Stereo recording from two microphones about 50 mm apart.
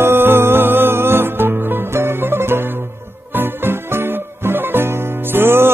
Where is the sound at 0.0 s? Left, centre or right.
Right.